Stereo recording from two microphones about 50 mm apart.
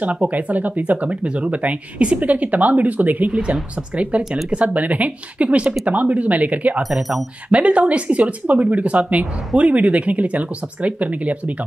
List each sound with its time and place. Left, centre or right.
0.0 s speech: right
6.8 s speech: centre
7.4 s speech: right